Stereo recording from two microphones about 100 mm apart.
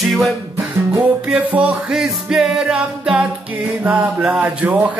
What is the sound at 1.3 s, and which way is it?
Music, 15° right (ahead or behind).